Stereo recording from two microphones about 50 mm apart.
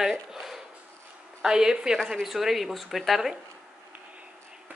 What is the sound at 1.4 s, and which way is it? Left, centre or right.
A woman's voice, centre.